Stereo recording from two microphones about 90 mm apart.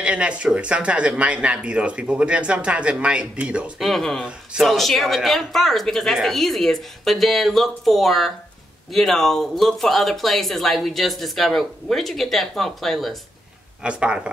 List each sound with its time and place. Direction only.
0.0 s speech: 10° right (ahead or behind)
3.8 s speech: 5° left (ahead or behind)
4.2 s speech: 5° right (ahead or behind)
13.8 s speech: 10° right (ahead or behind)